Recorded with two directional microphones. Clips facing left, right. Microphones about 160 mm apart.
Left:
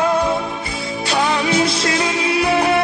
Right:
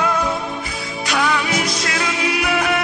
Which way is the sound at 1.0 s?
30° left (ahead or behind).